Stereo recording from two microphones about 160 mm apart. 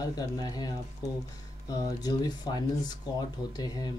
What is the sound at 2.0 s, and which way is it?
Speech, 25° left (ahead or behind).